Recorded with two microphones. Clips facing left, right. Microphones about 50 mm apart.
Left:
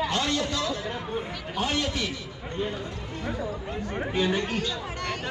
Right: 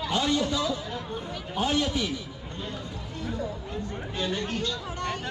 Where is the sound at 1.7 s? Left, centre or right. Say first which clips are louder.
Right 3 dB; centre.